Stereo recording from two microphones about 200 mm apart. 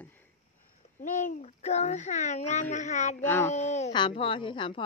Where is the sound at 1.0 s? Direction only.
40° left (ahead or behind).